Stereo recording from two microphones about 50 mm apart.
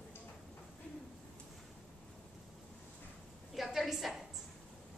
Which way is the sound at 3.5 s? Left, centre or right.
Centre.